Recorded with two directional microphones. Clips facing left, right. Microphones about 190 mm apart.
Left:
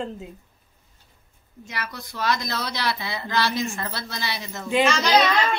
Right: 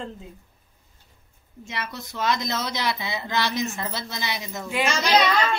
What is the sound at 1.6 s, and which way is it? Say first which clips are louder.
A woman's voice: right 1 dB; 25° right (ahead or behind).